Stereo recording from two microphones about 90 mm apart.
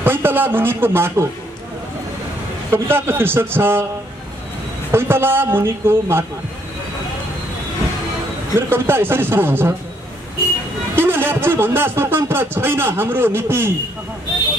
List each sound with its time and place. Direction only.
0.0 s a man's voice: 25° right (ahead or behind)
2.7 s a man's voice: 25° right (ahead or behind)
4.9 s a man's voice: 25° right (ahead or behind)
8.5 s a man's voice: 25° right (ahead or behind)
11.0 s a man's voice: 25° right (ahead or behind)